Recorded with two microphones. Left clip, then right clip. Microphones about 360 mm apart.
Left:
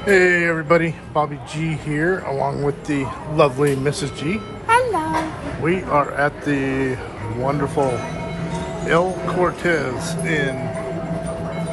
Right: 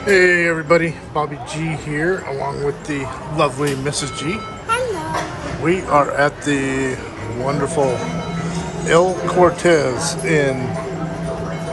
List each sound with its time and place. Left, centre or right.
0.0 s a man's voice: centre
8.8 s a man's voice: centre